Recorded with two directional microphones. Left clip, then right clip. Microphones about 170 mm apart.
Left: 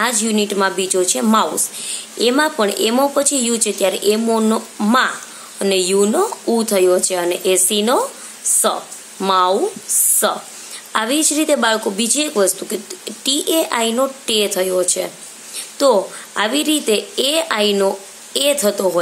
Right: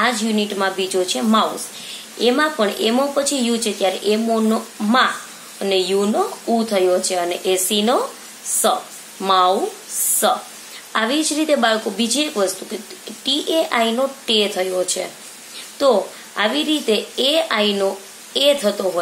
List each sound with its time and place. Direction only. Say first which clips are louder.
0.0 s speech: left 1 dB; 35° left (ahead or behind)
9.2 s speech: left 1 dB; 25° left (ahead or behind)
10.0 s a sound: even; 25° left (ahead or behind)
10.9 s speech: left 1 dB; 25° left (ahead or behind)